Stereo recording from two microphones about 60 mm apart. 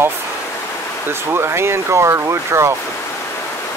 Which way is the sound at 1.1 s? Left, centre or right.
Right.